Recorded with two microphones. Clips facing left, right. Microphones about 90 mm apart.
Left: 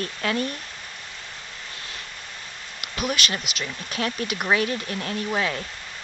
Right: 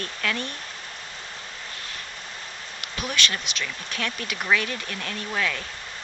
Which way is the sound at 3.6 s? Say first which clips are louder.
Left 4 dB; 35° left (ahead or behind).